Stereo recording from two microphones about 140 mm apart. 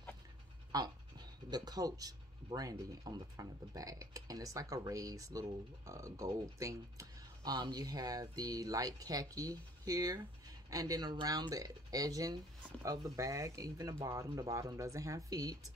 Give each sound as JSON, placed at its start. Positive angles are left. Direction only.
{"t": 0.7, "sound": "speech", "side_deg": -30}